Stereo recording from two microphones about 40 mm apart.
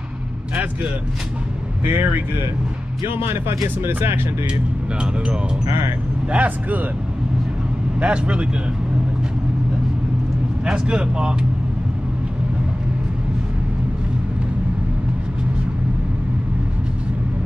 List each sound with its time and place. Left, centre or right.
1.9 s speech: right
3.2 s speech: right
6.3 s speech: right
8.0 s speech: right
10.6 s speech: right